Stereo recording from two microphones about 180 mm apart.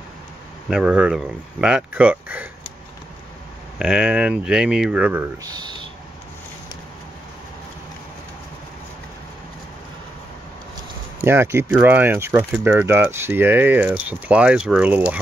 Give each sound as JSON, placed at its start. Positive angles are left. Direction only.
{"t": 0.7, "sound": "speech", "side_deg": -5}
{"t": 3.7, "sound": "speech", "side_deg": -5}
{"t": 5.5, "sound": "speech", "side_deg": -25}
{"t": 11.1, "sound": "speech", "side_deg": -15}